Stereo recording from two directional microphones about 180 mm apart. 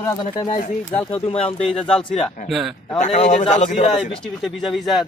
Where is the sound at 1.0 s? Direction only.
30° left (ahead or behind).